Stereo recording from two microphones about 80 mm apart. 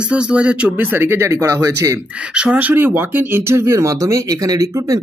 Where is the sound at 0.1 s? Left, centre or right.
Centre; by 1.7 s right.